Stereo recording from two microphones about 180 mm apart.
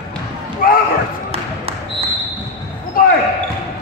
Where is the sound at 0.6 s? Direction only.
55° left (ahead or behind).